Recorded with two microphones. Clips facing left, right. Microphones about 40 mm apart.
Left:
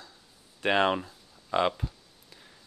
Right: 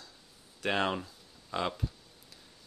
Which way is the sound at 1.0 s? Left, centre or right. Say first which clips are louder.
Left 2 dB; left.